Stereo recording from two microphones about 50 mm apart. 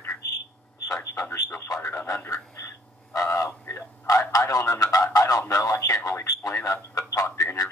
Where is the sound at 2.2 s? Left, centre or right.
Left.